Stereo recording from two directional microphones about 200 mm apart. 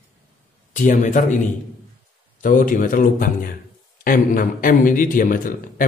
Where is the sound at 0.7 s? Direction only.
40° left (ahead or behind).